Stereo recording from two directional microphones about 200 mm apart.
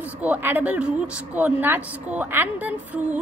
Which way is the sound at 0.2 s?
10° right (ahead or behind).